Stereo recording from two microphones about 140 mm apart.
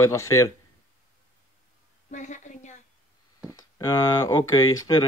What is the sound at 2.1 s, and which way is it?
Speech, 60° left (ahead or behind).